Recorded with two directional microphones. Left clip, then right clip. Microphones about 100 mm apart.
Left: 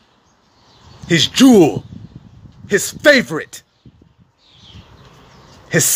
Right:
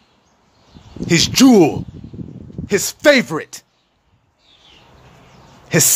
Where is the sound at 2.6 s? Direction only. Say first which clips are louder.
Left 1 dB; 20° right (ahead or behind).